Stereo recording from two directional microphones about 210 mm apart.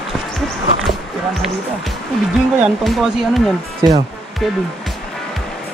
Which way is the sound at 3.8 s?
20° right (ahead or behind).